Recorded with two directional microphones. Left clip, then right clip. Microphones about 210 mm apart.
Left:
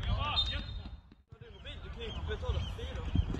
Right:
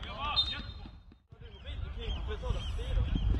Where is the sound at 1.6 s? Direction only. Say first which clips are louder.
Left 2 dB; 50° left (ahead or behind).